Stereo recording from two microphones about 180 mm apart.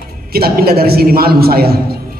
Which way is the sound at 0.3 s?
55° right (ahead or behind).